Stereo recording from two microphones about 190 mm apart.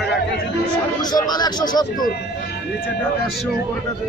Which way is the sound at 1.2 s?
20° left (ahead or behind).